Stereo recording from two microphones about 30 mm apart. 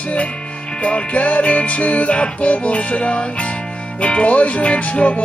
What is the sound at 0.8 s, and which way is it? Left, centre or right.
Music, left.